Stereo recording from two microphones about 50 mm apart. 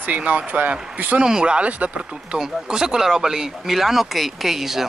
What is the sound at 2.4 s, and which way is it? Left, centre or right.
Speech, centre.